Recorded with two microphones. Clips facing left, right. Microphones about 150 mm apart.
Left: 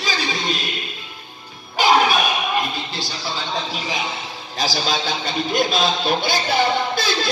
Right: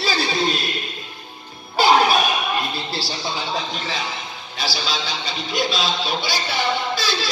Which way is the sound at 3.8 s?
15° left (ahead or behind).